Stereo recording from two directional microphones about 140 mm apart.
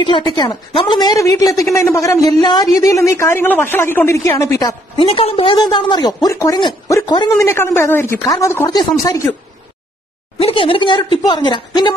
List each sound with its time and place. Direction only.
0.0 s a woman's voice: 35° left (ahead or behind)
4.9 s speech: 40° left (ahead or behind)
7.4 s a man's voice: 20° left (ahead or behind)
10.4 s speech: 40° left (ahead or behind)